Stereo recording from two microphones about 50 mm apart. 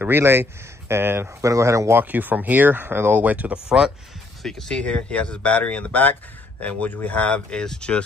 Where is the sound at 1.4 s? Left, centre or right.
Right.